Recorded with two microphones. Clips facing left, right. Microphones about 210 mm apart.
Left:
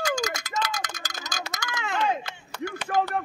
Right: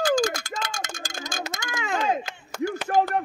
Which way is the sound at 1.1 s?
50° right (ahead or behind).